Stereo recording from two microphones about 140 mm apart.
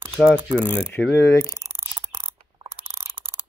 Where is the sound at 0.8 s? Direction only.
10° left (ahead or behind).